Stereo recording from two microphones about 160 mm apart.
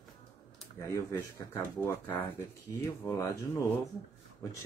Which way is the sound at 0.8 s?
20° left (ahead or behind).